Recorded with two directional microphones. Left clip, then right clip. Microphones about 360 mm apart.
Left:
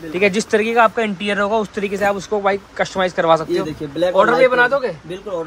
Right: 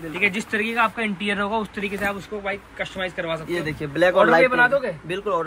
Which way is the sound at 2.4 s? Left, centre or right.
Left.